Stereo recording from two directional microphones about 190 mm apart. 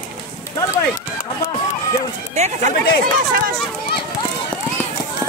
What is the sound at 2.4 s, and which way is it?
Speech, 35° right (ahead or behind).